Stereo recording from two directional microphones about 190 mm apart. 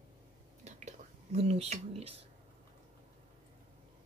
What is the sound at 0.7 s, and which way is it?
Whispering, 35° right (ahead or behind).